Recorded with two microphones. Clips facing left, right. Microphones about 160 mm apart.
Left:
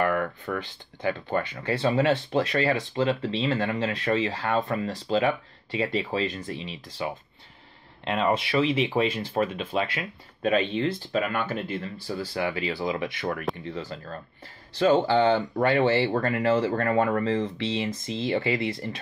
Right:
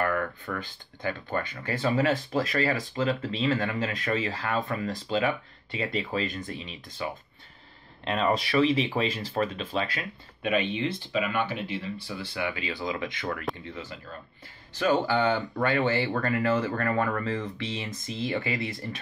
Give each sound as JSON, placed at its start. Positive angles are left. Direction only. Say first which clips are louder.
{"t": 0.0, "sound": "a sound", "louder": "left 3 dB", "side_deg": 25}
{"t": 1.0, "sound": "speech", "louder": "left 4 dB", "side_deg": 25}
{"t": 12.8, "sound": "speech", "louder": "left 1 dB", "side_deg": 20}
{"t": 14.8, "sound": "speech", "louder": "left 4 dB", "side_deg": 30}